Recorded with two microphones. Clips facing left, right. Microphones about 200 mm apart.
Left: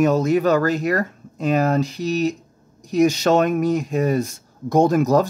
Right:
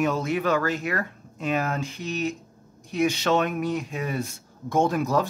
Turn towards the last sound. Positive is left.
turn(degrees=40)  # may be behind; listen again after turning